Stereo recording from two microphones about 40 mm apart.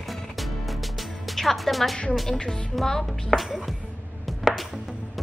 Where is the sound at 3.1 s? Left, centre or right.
Centre.